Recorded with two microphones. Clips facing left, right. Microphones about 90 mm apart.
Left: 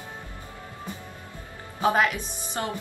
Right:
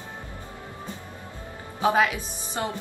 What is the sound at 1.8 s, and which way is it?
Speech, 15° right (ahead or behind).